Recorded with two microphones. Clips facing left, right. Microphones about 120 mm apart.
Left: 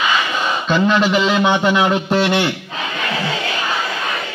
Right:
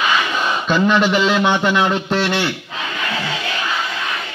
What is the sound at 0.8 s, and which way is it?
A man's voice, 10° left (ahead or behind).